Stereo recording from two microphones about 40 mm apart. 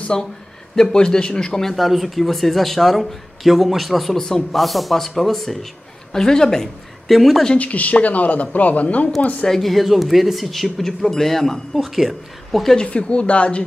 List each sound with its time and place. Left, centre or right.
0.1 s a woman's voice: centre
4.2 s a woman's voice: centre
4.5 s a woman's voice: centre
7.1 s speech: centre
7.5 s speech: left
9.5 s speech: centre
11.7 s speech: centre
12.7 s speech: left